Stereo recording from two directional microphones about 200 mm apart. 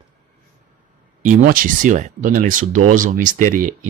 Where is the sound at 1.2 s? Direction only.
40° right (ahead or behind).